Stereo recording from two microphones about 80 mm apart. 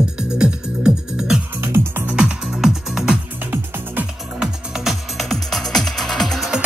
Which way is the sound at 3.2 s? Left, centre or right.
Right.